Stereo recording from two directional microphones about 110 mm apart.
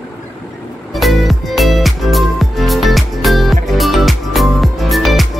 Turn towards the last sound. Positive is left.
turn(degrees=0)  # may be behind; listen again after turning